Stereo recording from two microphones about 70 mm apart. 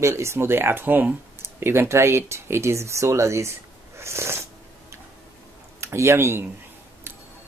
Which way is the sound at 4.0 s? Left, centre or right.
Right.